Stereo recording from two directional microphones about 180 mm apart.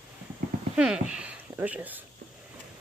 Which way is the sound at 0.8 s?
5° right (ahead or behind).